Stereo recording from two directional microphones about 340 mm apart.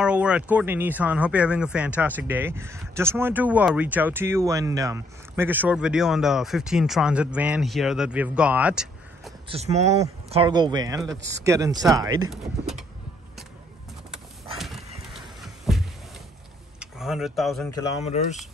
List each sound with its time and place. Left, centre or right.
0.0 s speech: centre
9.5 s speech: centre
15.1 s a sound: centre
16.8 s speech: centre
17.7 s speech: centre